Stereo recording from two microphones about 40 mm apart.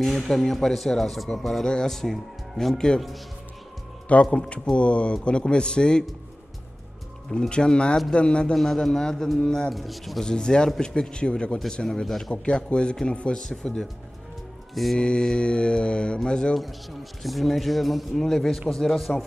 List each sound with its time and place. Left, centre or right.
0.0 s speech: centre
4.1 s speech: left
7.2 s speech: left
8.5 s speech: centre
9.8 s speech: centre
10.2 s speech: centre
14.7 s music: centre
15.0 s speech: left
17.2 s speech: centre